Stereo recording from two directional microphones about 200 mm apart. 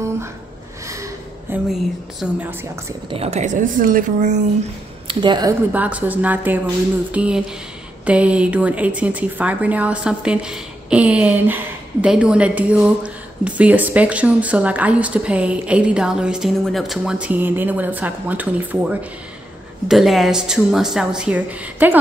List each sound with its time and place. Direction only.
0.8 s a sound: 15° right (ahead or behind)
1.7 s speech: centre (ahead or behind)
3.1 s speech: 30° right (ahead or behind)
5.0 s speech: 25° right (ahead or behind)
5.7 s a woman's voice: 5° right (ahead or behind)